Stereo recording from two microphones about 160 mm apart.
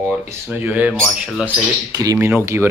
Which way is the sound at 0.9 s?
Centre (ahead or behind).